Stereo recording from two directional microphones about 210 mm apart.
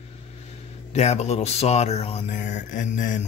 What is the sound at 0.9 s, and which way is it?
Speech, 30° left (ahead or behind).